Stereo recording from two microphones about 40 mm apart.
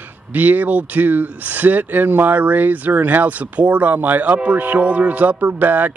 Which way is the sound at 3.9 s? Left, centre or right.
Right.